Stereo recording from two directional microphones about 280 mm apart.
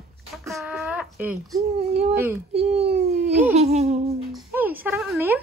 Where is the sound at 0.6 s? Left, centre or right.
Centre.